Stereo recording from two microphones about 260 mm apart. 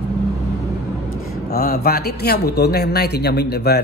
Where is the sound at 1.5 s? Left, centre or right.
Left.